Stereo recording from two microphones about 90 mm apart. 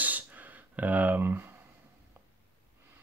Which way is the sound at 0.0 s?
20° right (ahead or behind).